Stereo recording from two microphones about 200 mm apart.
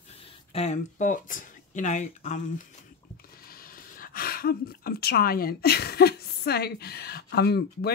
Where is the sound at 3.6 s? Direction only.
45° left (ahead or behind).